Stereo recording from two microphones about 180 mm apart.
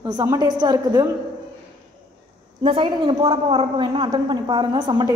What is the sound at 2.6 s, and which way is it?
A woman's voice, 30° right (ahead or behind).